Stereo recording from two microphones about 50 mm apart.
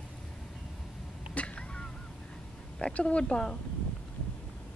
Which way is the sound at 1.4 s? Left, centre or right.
Left.